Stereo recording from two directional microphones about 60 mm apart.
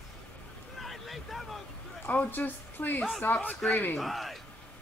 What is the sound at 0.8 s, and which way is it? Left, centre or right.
Boat, centre.